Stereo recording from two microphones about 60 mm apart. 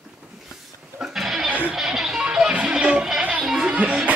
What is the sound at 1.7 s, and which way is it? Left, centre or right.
Music, centre.